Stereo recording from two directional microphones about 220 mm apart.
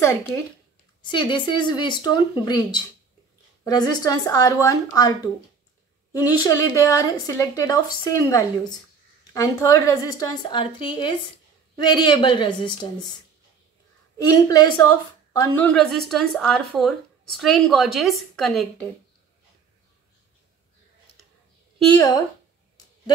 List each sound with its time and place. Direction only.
1.0 s a woman's voice: 20° left (ahead or behind)
14.1 s a woman's voice: 15° left (ahead or behind)